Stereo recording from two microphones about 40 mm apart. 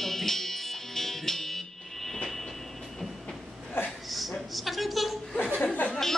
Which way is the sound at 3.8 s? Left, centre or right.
Left.